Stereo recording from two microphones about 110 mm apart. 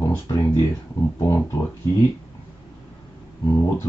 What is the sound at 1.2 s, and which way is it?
Speech, 25° left (ahead or behind).